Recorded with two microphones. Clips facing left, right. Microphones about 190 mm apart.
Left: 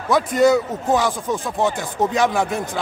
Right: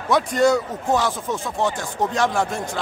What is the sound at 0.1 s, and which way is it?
Speech, 5° left (ahead or behind).